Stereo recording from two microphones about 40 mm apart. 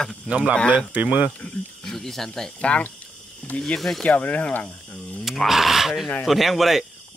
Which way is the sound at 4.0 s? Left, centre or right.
Left.